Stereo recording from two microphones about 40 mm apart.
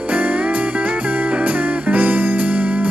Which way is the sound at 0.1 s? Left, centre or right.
Right.